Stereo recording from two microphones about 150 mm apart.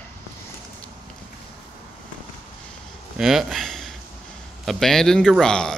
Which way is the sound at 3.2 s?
Centre (ahead or behind).